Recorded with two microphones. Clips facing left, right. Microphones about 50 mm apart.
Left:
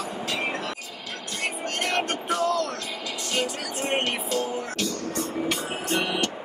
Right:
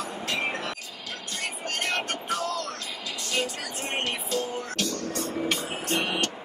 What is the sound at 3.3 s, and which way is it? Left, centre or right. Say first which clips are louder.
Music: left 1 dB; left.